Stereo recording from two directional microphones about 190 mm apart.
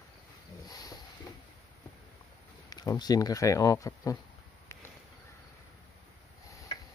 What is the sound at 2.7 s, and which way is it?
Speech, 20° left (ahead or behind).